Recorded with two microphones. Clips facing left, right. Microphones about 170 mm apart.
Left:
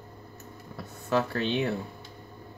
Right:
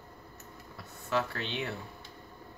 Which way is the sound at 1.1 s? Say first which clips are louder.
Left 6 dB; 40° left (ahead or behind).